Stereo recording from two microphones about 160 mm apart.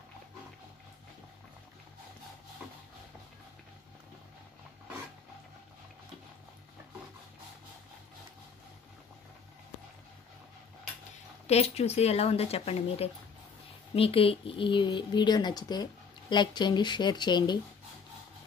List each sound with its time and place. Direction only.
11.4 s speech: 40° left (ahead or behind)